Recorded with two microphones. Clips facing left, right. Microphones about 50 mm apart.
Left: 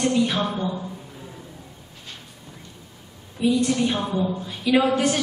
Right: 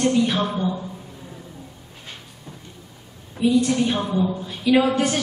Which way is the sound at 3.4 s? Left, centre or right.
Centre.